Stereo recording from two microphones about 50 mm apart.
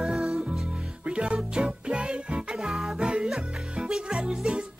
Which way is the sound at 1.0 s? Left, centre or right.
Right.